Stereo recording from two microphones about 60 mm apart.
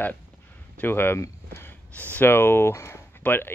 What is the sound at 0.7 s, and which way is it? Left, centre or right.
Speech, left.